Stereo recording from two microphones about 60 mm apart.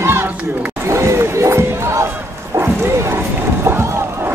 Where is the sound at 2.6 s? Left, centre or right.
Right.